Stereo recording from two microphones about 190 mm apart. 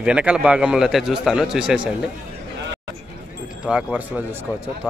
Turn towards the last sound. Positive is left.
turn(degrees=-5)  # may be behind; listen again after turning